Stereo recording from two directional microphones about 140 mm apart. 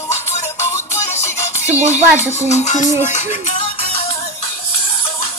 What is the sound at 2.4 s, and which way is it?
Music, 55° left (ahead or behind).